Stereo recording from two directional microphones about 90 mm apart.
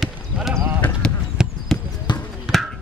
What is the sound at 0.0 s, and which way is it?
Clip-clop, centre (ahead or behind).